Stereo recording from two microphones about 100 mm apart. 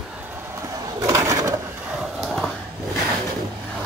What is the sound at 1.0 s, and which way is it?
Pigeon, 35° right (ahead or behind).